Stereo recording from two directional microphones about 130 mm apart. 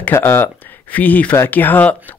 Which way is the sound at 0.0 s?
20° left (ahead or behind).